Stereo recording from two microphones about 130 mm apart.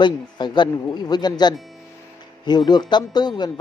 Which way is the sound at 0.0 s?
35° left (ahead or behind).